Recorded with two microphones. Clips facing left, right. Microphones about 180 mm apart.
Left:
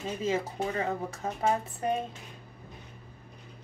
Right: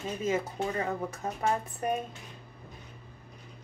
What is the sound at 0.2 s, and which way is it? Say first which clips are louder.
A woman's voice: even; 25° left (ahead or behind).